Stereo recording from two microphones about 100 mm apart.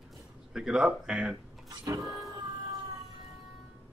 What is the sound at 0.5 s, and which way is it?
Speech, 5° right (ahead or behind).